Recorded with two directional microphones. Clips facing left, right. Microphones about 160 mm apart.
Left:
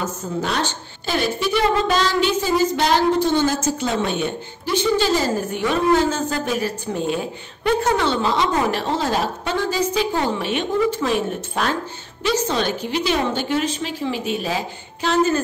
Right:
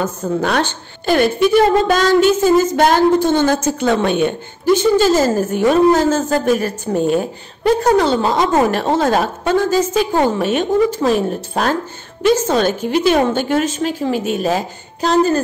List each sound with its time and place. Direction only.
0.0 s a woman's voice: 55° right (ahead or behind)
4.7 s a woman's voice: 45° right (ahead or behind)